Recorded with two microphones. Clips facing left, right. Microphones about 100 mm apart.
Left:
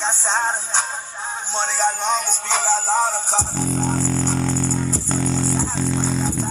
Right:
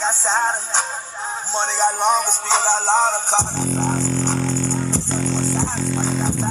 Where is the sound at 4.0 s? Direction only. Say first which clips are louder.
Even; 5° left (ahead or behind).